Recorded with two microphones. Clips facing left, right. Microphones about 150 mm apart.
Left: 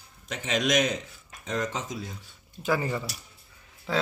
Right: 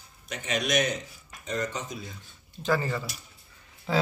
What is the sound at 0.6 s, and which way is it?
Speech, 90° left.